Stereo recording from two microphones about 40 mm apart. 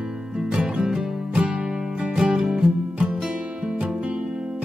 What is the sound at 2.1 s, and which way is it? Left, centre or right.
Music, centre.